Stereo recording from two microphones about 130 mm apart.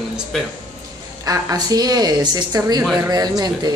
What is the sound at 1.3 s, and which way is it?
A woman's voice, 30° right (ahead or behind).